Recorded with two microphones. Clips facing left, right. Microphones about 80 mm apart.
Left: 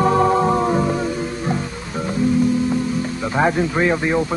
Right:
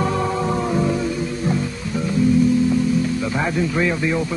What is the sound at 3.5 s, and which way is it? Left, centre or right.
Speech, left.